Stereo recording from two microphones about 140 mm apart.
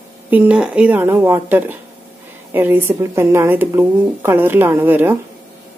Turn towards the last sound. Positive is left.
turn(degrees=-15)  # may be behind; listen again after turning